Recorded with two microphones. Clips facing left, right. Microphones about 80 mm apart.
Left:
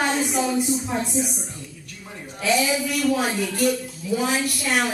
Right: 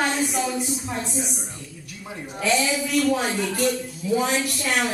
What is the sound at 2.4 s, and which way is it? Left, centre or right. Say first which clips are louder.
Speech: left 1 dB; centre.